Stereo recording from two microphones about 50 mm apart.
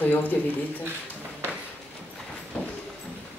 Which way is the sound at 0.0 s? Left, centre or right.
Left.